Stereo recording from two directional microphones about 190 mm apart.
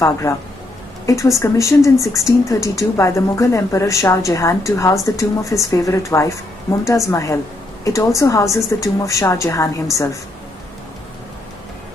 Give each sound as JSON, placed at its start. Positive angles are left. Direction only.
{"t": 0.2, "sound": "speech", "side_deg": 15}